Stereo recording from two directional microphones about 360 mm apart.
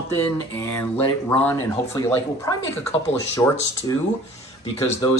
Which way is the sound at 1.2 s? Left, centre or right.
Centre.